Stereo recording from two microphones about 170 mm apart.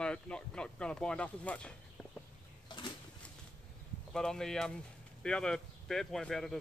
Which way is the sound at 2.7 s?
25° left (ahead or behind).